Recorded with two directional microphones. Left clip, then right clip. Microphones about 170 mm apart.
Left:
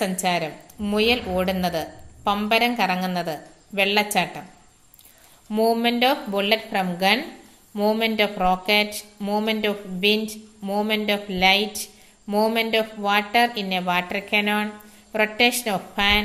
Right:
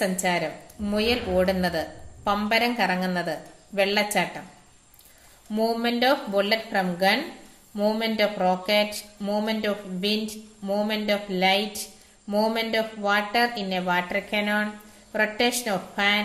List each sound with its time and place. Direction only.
0.0 s a woman's voice: 25° left (ahead or behind)
5.5 s a woman's voice: 30° left (ahead or behind)